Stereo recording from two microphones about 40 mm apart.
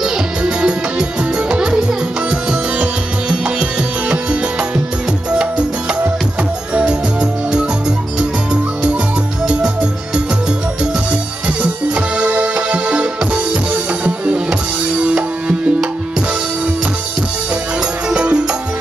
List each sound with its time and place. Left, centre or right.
0.0 s music: right
2.8 s music: right
6.9 s music: right
9.5 s music: right
11.4 s music: right
18.1 s music: right